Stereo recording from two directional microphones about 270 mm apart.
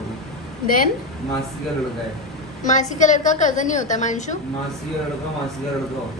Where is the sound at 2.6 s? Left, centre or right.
Left.